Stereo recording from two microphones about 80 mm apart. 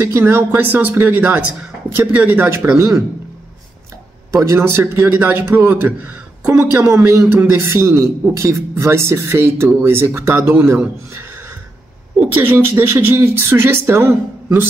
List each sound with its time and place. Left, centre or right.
0.2 s a man's voice: right
4.6 s a man's voice: right
7.3 s a man's voice: right